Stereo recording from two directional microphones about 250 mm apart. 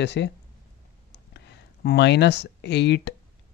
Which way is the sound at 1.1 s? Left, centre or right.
Left.